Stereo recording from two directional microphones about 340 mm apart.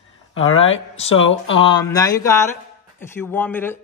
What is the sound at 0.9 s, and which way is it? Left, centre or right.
Speech, centre.